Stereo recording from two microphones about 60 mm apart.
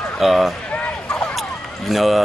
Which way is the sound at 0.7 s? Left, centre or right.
Centre.